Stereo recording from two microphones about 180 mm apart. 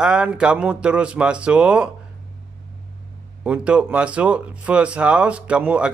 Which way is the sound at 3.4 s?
5° right (ahead or behind).